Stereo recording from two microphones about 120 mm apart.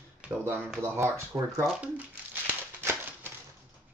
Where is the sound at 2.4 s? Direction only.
20° right (ahead or behind).